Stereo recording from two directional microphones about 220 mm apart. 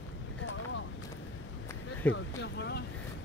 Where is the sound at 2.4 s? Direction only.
50° left (ahead or behind).